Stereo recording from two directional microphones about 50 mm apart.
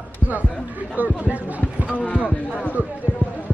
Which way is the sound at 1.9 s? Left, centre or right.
Left.